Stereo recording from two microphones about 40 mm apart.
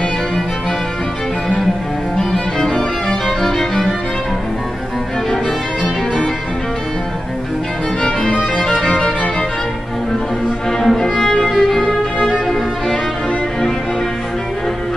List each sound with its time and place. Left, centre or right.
2.1 s music: centre
8.0 s music: left
10.9 s music: centre